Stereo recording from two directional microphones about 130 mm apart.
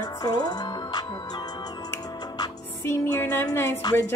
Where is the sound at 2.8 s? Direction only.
20° left (ahead or behind).